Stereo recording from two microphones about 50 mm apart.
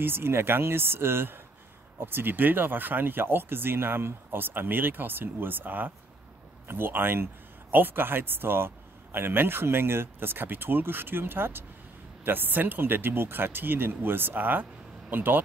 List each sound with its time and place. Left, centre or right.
0.0 s speech: right